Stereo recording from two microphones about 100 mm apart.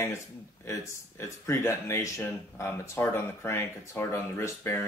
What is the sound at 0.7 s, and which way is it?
A man's voice, 30° left (ahead or behind).